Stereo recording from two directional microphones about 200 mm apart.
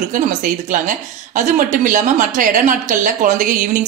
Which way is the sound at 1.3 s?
40° right (ahead or behind).